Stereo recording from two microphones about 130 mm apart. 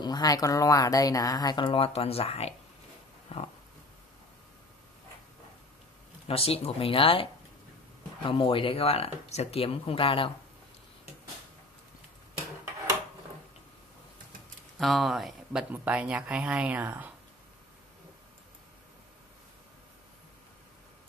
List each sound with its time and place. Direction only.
0.0 s speech: 30° left (ahead or behind); by 3.4 s 50° left (ahead or behind)
6.2 s speech: 50° left (ahead or behind)
14.8 s speech: centre (ahead or behind)